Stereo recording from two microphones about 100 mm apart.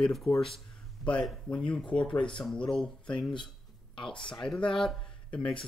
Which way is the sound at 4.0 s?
55° left (ahead or behind).